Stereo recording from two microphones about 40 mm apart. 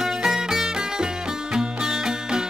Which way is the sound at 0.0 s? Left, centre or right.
Centre.